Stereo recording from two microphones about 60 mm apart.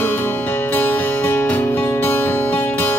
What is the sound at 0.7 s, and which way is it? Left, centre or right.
Music, left.